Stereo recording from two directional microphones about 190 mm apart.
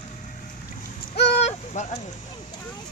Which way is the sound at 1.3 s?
35° left (ahead or behind).